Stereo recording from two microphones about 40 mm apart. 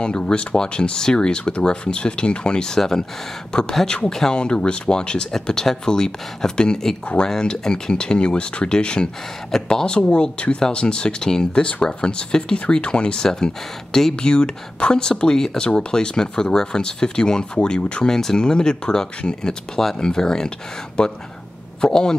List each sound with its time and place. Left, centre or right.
0.0 s speech: left; by 4.4 s centre
4.4 s speech: left
14.1 s speech: left
18.0 s speech: centre